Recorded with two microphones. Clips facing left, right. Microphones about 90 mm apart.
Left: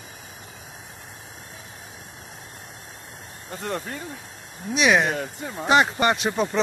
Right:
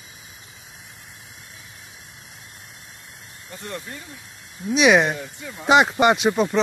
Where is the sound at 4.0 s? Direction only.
35° left (ahead or behind).